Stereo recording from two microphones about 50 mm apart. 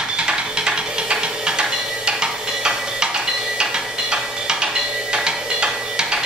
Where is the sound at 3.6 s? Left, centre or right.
Centre.